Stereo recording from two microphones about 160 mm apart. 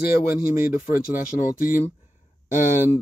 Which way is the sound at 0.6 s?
55° left (ahead or behind).